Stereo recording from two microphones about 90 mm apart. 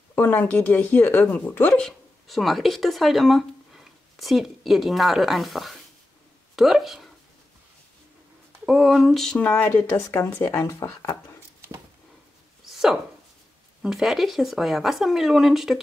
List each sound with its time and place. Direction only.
0.1 s speech: 25° left (ahead or behind)
1.8 s speech: 5° left (ahead or behind)
8.6 s speech: centre (ahead or behind); by 11.1 s 35° left (ahead or behind)
12.6 s chopping: 5° right (ahead or behind)
13.8 s speech: centre (ahead or behind)